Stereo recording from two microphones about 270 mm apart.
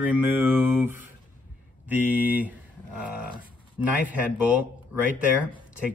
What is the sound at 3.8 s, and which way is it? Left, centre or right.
Speech, centre.